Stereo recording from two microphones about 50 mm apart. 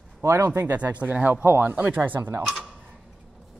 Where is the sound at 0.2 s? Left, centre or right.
Right.